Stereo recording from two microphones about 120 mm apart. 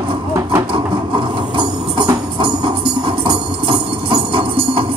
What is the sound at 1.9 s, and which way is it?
Music, 45° right (ahead or behind).